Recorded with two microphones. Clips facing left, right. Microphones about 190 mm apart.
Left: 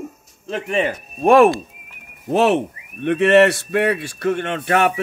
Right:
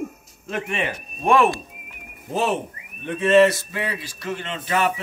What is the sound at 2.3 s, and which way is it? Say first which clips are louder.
Speech: left 7 dB; 70° left (ahead or behind).